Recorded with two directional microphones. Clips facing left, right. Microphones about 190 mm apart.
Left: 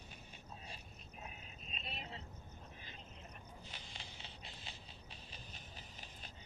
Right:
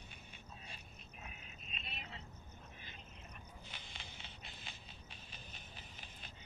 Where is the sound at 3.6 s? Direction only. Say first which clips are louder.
Left 1 dB; 40° left (ahead or behind).